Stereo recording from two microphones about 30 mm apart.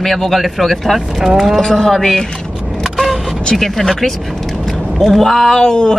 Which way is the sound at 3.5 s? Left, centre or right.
Centre.